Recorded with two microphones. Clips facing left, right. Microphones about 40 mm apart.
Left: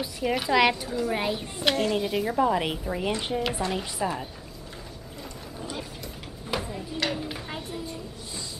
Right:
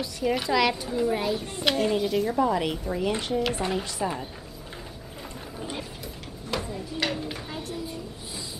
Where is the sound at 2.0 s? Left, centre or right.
Centre.